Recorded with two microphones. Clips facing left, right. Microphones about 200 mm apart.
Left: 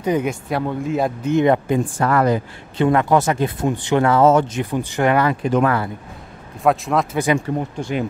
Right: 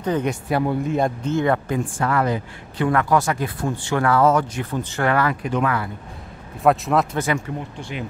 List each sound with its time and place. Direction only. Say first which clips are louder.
0.0 s speech: left 2 dB; 10° left (ahead or behind)
1.3 s speech: left 7 dB; 20° left (ahead or behind)
2.0 s speech: left 3 dB; 40° left (ahead or behind)
2.8 s speech: left 3 dB; 25° left (ahead or behind)
5.5 s speech: left 5 dB; 40° left (ahead or behind)
6.6 s speech: even; centre (ahead or behind)
7.3 s speech: left 5 dB; 20° left (ahead or behind)